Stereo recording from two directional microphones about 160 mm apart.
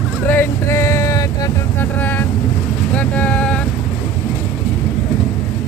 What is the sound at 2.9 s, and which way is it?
Vehicle, 10° left (ahead or behind).